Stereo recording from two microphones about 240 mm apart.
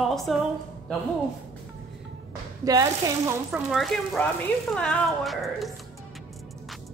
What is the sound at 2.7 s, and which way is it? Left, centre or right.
Speech, centre.